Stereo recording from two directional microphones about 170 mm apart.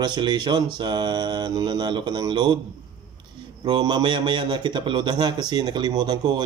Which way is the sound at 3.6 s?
25° right (ahead or behind).